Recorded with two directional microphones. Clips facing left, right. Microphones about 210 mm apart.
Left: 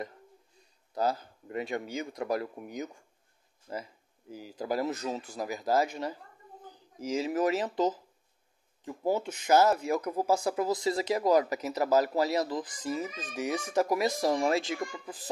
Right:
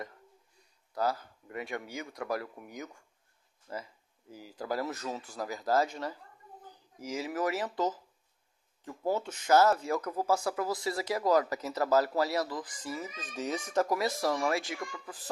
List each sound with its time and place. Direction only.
0.9 s speech: 20° left (ahead or behind)